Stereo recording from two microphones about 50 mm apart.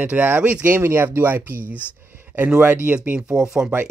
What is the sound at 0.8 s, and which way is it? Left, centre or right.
Speech, right.